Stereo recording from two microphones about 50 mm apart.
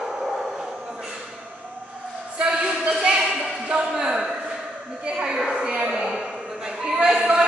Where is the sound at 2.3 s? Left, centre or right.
Centre.